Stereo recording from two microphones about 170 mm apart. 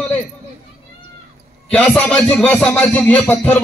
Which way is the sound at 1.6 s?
10° left (ahead or behind).